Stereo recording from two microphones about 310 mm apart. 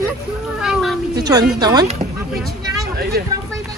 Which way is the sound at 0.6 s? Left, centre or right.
Centre.